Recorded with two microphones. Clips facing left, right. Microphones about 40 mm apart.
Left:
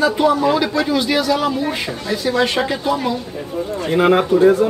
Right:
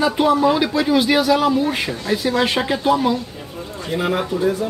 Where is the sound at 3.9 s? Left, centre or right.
Left.